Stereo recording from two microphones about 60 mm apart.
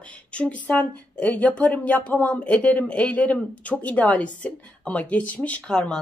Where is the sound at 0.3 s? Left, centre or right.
Left.